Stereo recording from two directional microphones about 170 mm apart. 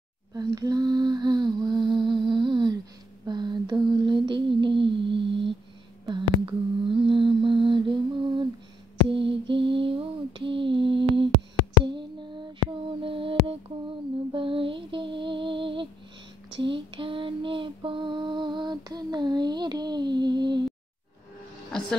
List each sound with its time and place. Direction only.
0.3 s humming: 20° right (ahead or behind)
3.3 s lullaby: 25° right (ahead or behind)
6.0 s humming: 25° right (ahead or behind)
9.1 s lullaby: 30° right (ahead or behind)
11.8 s a sound: 25° right (ahead or behind)
14.3 s music: 30° right (ahead or behind)
16.5 s lullaby: 30° right (ahead or behind)